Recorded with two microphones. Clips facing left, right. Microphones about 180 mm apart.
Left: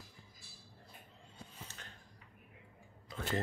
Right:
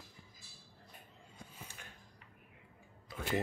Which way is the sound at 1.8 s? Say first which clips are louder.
Even; 10° right (ahead or behind).